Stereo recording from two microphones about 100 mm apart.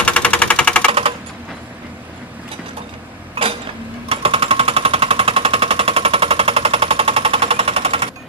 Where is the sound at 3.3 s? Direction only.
70° right (ahead or behind).